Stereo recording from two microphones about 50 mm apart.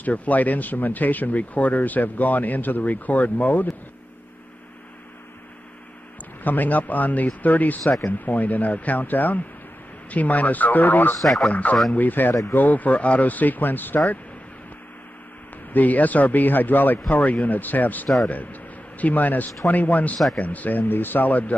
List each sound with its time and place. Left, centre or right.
0.0 s speech: left
6.4 s speech: left
11.1 s speech: centre
11.9 s speech: left
15.7 s a man's voice: left